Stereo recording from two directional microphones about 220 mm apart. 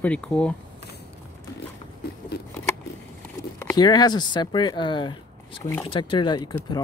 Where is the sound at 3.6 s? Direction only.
15° left (ahead or behind).